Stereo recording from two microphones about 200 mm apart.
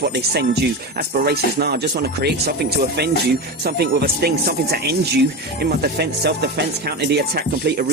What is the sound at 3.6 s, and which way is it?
Speech, 50° right (ahead or behind).